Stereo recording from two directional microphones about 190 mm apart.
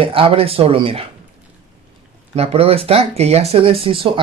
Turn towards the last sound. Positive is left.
turn(degrees=-30)  # may be behind; listen again after turning